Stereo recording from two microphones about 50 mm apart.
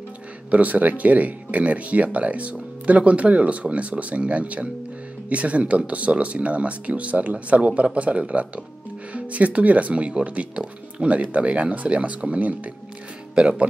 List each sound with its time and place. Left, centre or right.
0.5 s speech: right